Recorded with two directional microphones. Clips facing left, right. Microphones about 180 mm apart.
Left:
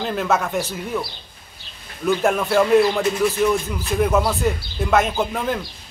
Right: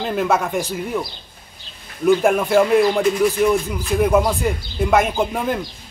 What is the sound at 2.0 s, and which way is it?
Speech, 10° right (ahead or behind).